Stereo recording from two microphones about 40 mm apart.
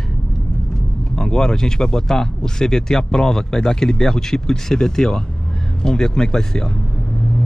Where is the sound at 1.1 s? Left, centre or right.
Centre.